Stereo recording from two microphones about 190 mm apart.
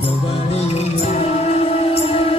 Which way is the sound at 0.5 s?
35° left (ahead or behind).